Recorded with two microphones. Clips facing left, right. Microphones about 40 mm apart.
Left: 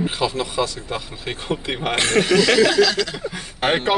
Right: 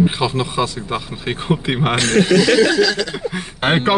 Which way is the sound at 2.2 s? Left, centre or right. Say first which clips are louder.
Right 2 dB; centre.